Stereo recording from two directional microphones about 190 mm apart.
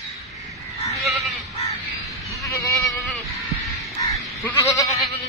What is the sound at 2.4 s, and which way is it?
Sheep, 15° left (ahead or behind).